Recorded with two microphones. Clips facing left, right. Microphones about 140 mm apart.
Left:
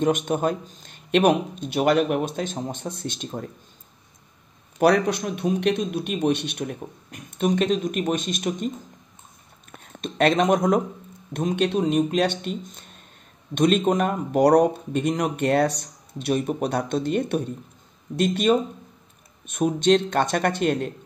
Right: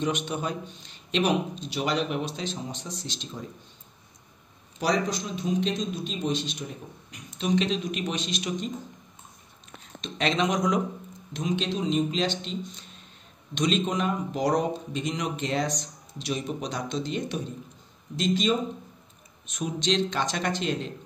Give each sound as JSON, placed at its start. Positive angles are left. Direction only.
{"t": 0.0, "sound": "a man's voice", "side_deg": 50}
{"t": 4.7, "sound": "speech", "side_deg": 60}